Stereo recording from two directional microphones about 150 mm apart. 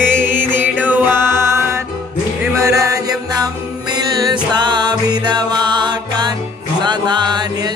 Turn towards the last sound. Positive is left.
turn(degrees=-30)  # may be behind; listen again after turning